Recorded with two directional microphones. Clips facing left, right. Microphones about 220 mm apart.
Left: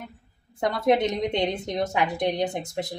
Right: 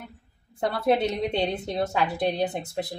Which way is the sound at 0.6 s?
15° left (ahead or behind).